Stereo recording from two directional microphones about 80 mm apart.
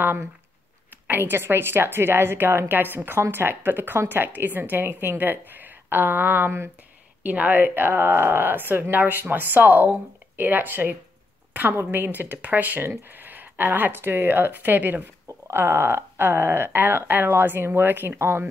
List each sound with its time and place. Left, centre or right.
0.0 s a woman's voice: right